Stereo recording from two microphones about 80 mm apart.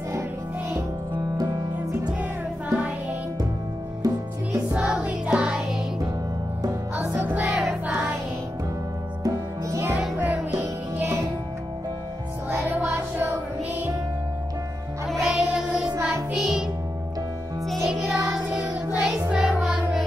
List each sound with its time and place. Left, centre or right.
4.0 s music: right
4.7 s music: centre
7.2 s music: right
9.2 s music: right
10.1 s music: right
12.4 s a sound: right
15.0 s music: centre
15.4 s child singing: centre
16.0 s music: centre
17.8 s music: centre